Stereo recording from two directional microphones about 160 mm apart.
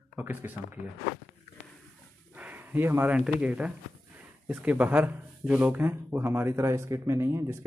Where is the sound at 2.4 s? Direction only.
10° right (ahead or behind).